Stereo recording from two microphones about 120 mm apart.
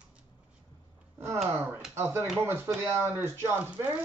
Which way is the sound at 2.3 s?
20° right (ahead or behind).